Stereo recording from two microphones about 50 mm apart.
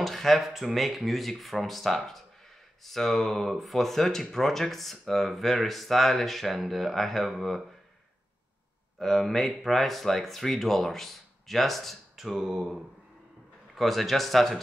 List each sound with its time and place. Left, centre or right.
0.0 s speech: centre
8.9 s speech: centre
13.7 s speech: centre